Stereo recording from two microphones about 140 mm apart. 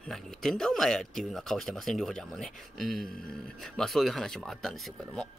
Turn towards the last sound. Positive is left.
turn(degrees=0)  # may be behind; listen again after turning